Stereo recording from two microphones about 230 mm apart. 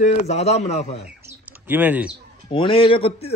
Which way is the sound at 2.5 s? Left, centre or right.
Left.